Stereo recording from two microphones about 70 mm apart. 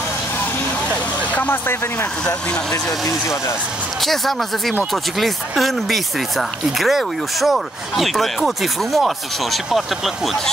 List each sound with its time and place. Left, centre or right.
0.8 s vehicle: left
2.7 s speech: left
4.0 s speech: centre